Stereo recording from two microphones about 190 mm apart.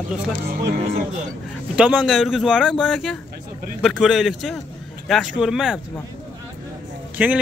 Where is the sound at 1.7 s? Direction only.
5° right (ahead or behind).